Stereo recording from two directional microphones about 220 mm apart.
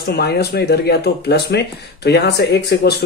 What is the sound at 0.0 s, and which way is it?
Speech, 45° left (ahead or behind).